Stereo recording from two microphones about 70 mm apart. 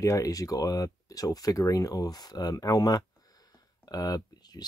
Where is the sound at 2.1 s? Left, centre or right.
Left.